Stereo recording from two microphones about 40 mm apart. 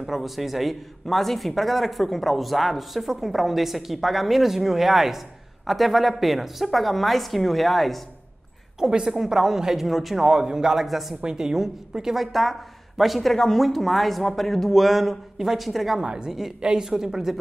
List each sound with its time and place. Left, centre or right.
0.0 s speech: centre
8.7 s a woman's voice: centre
9.8 s speech: centre
10.1 s a woman's voice: centre
10.8 s speech: centre
11.2 s a woman's voice: centre
12.2 s speech: centre
16.0 s a woman's voice: centre
16.3 s a woman's voice: centre
16.6 s a woman's voice: centre